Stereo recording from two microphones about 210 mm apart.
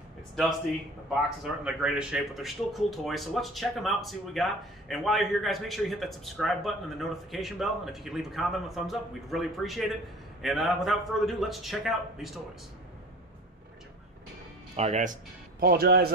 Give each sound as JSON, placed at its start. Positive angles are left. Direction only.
{"t": 1.4, "sound": "speech", "side_deg": -5}
{"t": 14.8, "sound": "speech", "side_deg": -35}
{"t": 15.6, "sound": "a man's voice", "side_deg": -45}